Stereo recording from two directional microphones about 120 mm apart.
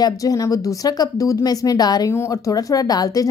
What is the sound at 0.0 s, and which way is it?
A woman's voice, 30° left (ahead or behind).